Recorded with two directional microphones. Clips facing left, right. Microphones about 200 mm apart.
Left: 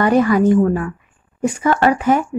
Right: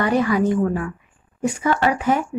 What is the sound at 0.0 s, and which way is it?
Speech, 50° left (ahead or behind).